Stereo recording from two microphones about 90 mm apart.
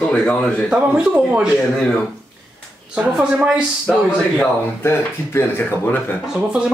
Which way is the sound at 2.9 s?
10° right (ahead or behind).